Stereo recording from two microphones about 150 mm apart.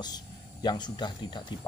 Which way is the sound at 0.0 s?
25° left (ahead or behind).